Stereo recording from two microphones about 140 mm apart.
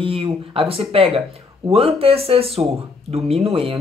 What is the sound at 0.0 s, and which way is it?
Speech, 40° right (ahead or behind).